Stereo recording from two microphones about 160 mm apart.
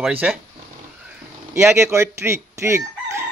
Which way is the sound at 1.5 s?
15° right (ahead or behind).